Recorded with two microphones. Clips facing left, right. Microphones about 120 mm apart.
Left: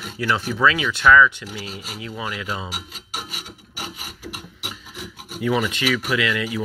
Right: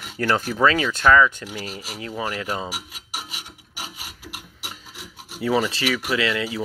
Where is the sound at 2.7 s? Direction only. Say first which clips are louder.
Even; 10° right (ahead or behind).